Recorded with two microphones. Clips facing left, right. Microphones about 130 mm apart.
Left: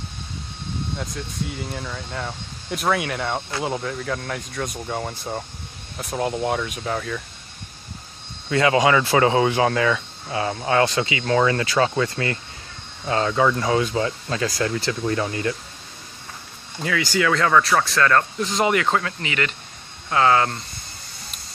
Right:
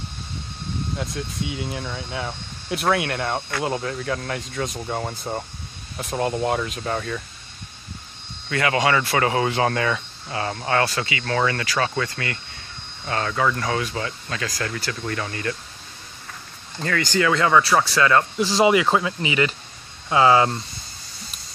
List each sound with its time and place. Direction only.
0.9 s speech: centre (ahead or behind)
8.5 s speech: 20° left (ahead or behind)
16.8 s speech: 10° left (ahead or behind)
17.3 s speech: 5° right (ahead or behind)